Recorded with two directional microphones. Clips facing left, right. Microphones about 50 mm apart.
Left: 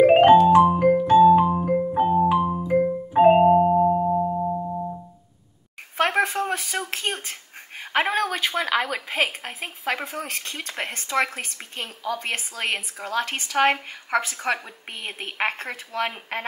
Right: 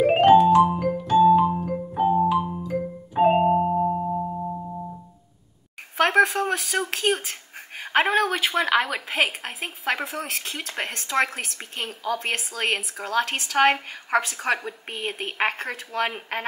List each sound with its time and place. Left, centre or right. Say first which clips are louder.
0.0 s music: left 2 dB; centre
5.9 s a sound: right 3 dB; centre
7.9 s a woman's voice: right 2 dB; centre